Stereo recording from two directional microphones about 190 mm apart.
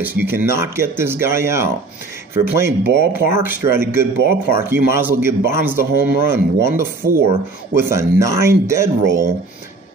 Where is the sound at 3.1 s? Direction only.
10° right (ahead or behind).